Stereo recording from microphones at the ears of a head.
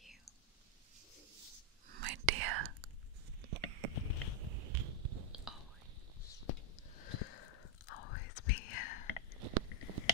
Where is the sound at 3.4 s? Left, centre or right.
Right.